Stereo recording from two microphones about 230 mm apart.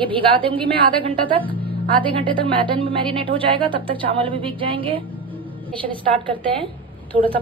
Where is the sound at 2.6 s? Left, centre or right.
Right.